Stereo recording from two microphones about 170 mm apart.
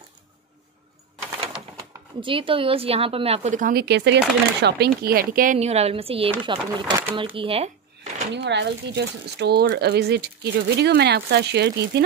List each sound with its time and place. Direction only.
2.2 s a woman's voice: 30° right (ahead or behind); by 3.8 s 50° right (ahead or behind)
3.8 s speech: 85° right; by 7.1 s 25° right (ahead or behind)
7.3 s a sound: 35° right (ahead or behind)
8.3 s speech: 85° right